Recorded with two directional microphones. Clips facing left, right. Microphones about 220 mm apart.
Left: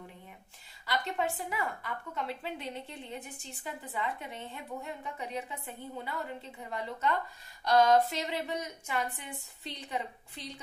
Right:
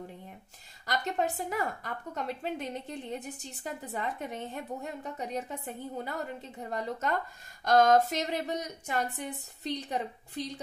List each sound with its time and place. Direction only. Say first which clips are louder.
0.8 s a woman's voice: right 2 dB; 45° right (ahead or behind)